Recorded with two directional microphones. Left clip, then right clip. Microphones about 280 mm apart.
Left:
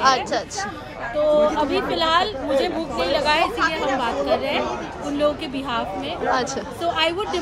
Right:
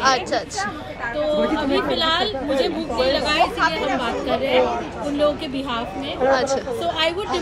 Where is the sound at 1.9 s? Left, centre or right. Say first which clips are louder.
Left 1 dB; left.